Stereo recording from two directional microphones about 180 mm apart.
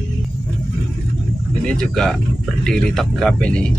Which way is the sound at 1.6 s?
5° left (ahead or behind).